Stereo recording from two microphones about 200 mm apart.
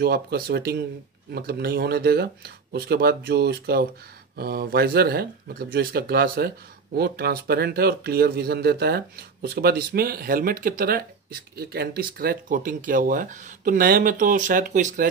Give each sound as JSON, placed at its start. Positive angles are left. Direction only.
{"t": 0.0, "sound": "speech", "side_deg": -55}